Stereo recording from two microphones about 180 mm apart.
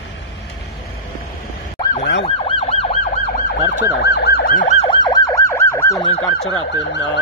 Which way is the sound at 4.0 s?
65° left (ahead or behind).